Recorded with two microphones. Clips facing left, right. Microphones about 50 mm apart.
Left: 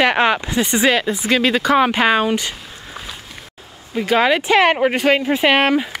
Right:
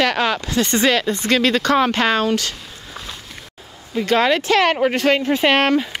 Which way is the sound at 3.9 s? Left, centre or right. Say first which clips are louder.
Left 1 dB; centre.